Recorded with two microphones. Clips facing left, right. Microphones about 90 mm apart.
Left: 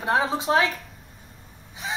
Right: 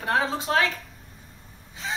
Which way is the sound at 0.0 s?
20° left (ahead or behind).